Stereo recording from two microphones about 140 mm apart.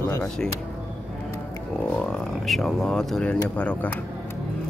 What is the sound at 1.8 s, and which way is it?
Speech, 5° left (ahead or behind).